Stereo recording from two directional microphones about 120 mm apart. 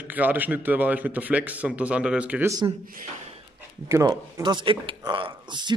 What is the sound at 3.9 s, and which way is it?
Speech, 25° right (ahead or behind).